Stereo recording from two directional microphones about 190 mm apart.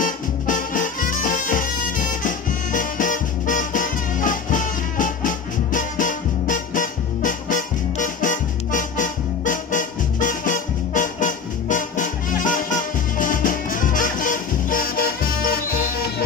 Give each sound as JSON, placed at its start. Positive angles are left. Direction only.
{"t": 0.0, "sound": "music", "side_deg": 45}